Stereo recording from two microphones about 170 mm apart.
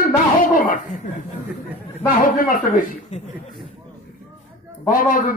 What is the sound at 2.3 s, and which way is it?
Speech, 55° left (ahead or behind).